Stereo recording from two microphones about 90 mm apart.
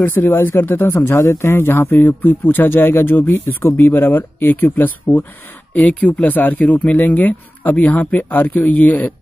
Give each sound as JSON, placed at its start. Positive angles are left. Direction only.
{"t": 0.0, "sound": "a man's voice", "side_deg": 25}
{"t": 5.8, "sound": "a man's voice", "side_deg": 15}